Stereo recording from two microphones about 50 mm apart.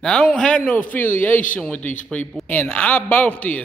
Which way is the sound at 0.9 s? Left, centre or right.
Left.